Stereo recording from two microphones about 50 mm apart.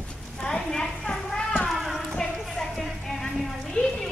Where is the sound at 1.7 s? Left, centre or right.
Centre.